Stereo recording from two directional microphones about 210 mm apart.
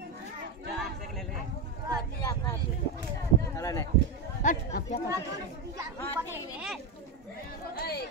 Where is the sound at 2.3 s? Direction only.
15° left (ahead or behind).